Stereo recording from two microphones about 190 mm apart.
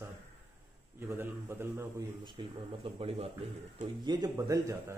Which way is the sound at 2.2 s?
25° right (ahead or behind).